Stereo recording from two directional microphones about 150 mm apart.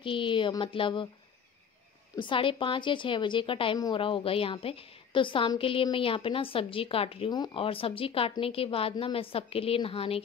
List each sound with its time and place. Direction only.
0.0 s a woman's voice: 35° left (ahead or behind)
2.1 s a woman's voice: 35° left (ahead or behind)